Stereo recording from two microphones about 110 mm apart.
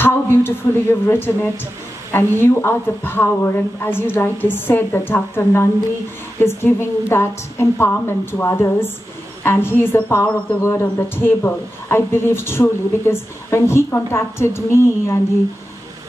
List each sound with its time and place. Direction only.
0.0 s a woman's voice: 20° left (ahead or behind)